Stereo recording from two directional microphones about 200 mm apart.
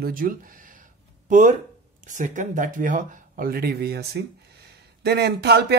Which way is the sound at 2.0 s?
40° right (ahead or behind).